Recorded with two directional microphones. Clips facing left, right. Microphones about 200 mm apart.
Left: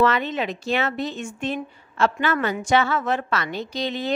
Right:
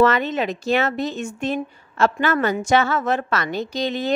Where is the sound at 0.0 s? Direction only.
45° right (ahead or behind).